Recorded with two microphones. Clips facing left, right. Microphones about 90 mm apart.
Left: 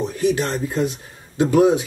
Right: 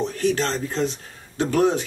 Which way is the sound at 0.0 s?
15° left (ahead or behind).